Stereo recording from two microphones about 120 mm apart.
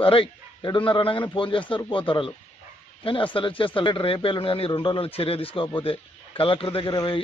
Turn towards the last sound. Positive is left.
turn(degrees=50)  # may be behind; listen again after turning